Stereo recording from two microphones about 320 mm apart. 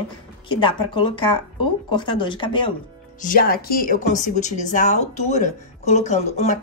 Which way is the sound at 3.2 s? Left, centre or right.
Left.